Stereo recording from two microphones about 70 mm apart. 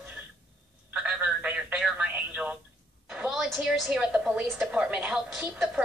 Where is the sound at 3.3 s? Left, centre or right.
Centre.